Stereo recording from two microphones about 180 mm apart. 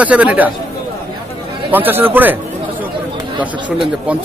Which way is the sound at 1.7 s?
10° right (ahead or behind).